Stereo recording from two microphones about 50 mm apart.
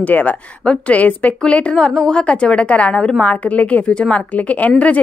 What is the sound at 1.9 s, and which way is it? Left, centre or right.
A woman's voice, centre.